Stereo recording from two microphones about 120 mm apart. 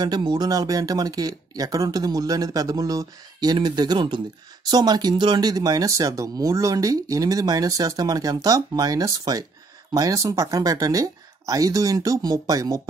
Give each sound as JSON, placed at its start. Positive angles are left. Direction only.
{"t": 0.0, "sound": "speech", "side_deg": -35}